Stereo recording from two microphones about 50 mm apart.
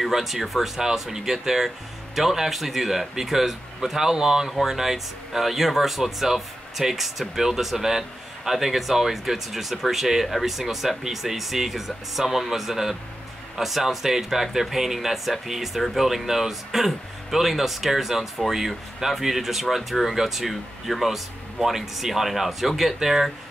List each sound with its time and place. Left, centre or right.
0.0 s speech: centre